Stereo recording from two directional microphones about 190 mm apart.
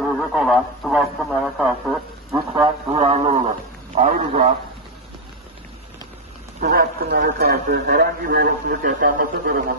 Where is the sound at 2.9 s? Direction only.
30° right (ahead or behind).